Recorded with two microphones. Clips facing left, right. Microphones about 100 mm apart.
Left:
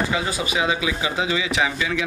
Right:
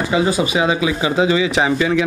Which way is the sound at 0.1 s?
25° right (ahead or behind).